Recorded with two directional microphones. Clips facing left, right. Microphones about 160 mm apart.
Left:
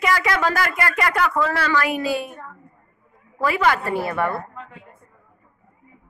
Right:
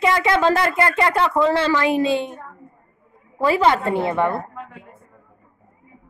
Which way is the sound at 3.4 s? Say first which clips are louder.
Right 3 dB; 25° right (ahead or behind).